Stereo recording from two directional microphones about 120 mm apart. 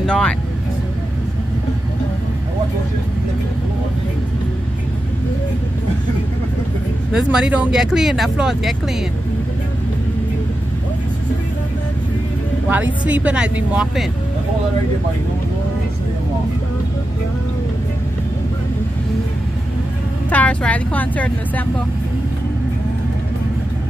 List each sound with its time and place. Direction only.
0.0 s a woman's voice: 5° left (ahead or behind)
7.2 s speech: 5° right (ahead or behind)
12.6 s speech: 15° right (ahead or behind)
20.2 s a woman's voice: 10° left (ahead or behind)